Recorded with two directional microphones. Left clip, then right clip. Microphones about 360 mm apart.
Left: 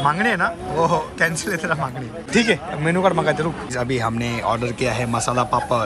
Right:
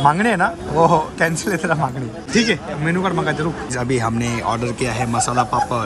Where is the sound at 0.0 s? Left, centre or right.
Centre.